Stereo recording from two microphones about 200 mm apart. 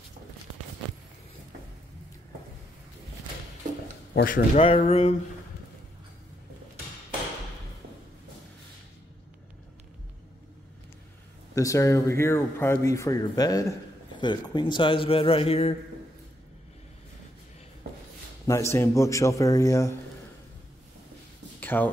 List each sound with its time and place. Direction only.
4.1 s speech: 45° left (ahead or behind)
4.6 s speech: 30° left (ahead or behind)
11.5 s speech: 15° left (ahead or behind)
18.5 s a man's voice: 15° left (ahead or behind)
21.5 s a sound: 10° left (ahead or behind)